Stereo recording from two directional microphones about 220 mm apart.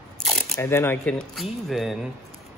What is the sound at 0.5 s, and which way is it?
Speech, 10° left (ahead or behind).